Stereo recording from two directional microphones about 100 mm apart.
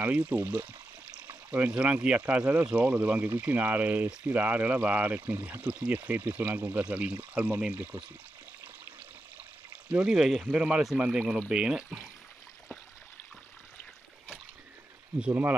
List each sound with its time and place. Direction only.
0.0 s speech: 15° right (ahead or behind)
9.8 s speech: 10° right (ahead or behind)
15.1 s speech: 15° right (ahead or behind)